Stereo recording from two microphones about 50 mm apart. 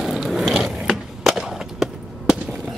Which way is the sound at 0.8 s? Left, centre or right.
Centre.